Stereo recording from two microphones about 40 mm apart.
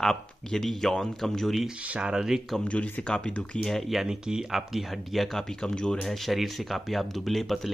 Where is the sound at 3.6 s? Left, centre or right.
Centre.